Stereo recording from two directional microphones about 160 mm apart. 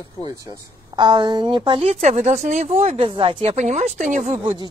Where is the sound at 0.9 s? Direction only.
30° right (ahead or behind); by 4.4 s 50° right (ahead or behind).